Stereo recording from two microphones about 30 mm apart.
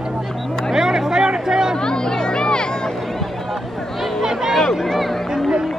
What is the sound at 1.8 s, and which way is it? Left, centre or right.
Music, left.